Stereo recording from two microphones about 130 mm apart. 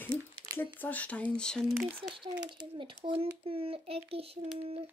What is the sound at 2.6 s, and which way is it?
Speech, 40° right (ahead or behind).